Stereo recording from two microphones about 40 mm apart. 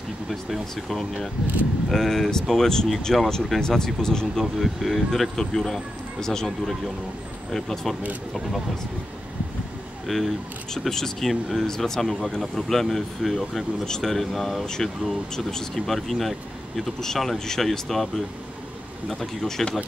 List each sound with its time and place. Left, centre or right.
0.3 s speech: centre
4.6 s speech: centre
10.0 s speech: centre
19.6 s speech: centre